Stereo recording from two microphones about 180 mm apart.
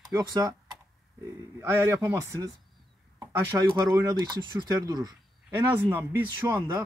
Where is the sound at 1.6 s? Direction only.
15° right (ahead or behind).